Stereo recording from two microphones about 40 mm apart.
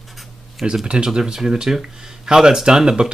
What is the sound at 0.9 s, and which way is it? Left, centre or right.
Speech, right.